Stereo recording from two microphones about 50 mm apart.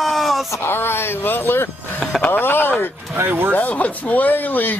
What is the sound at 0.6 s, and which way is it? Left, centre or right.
Speech, left.